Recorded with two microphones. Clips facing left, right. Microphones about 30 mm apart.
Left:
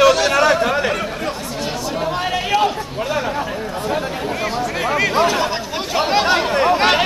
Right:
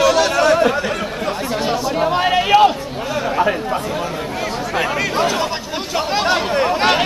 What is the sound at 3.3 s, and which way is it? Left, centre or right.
Chatter, right.